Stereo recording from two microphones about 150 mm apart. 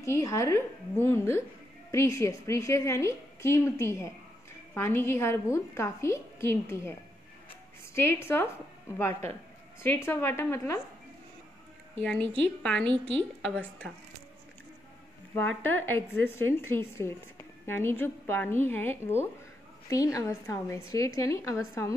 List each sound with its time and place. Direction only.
0.0 s a woman's voice: 20° left (ahead or behind)
9.8 s a woman's voice: 15° left (ahead or behind)
12.4 s a woman's voice: 5° left (ahead or behind)
15.3 s a woman's voice: 15° left (ahead or behind)